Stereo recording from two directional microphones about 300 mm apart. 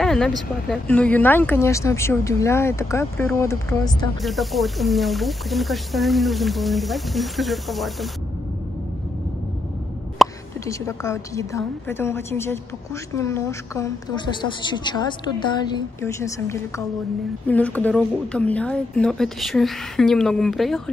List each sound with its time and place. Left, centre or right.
0.0 s a sound: centre
0.7 s speech: centre
10.1 s a woman's voice: centre